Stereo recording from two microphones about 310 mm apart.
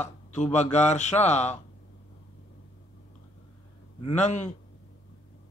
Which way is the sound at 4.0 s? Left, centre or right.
Left.